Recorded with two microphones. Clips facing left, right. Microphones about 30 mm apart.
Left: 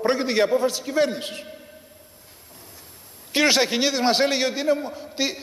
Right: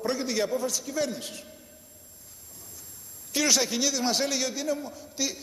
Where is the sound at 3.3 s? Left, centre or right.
Left.